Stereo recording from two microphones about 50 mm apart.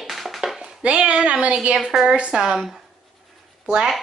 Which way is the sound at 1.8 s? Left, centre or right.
Centre.